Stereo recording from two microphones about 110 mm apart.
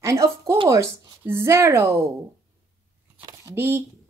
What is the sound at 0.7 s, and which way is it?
Speech, 25° right (ahead or behind).